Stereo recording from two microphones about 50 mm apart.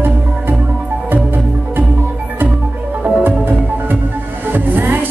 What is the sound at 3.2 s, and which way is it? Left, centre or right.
Music, right.